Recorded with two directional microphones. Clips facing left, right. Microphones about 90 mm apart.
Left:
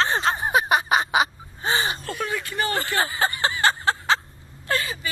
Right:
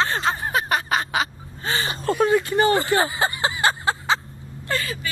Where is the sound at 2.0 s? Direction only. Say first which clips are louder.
Right 10 dB; 35° right (ahead or behind); by 4.1 s 10° right (ahead or behind).